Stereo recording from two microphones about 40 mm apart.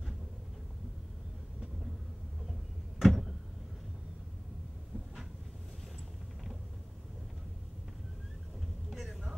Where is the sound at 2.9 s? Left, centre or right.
Centre.